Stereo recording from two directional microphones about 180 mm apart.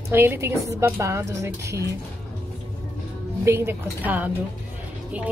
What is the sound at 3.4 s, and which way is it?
Speech, 15° right (ahead or behind).